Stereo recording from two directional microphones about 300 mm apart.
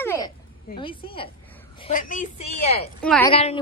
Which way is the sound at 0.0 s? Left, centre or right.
Centre.